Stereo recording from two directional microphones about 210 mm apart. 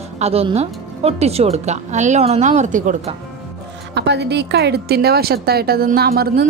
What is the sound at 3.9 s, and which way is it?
A woman's voice, 55° right (ahead or behind).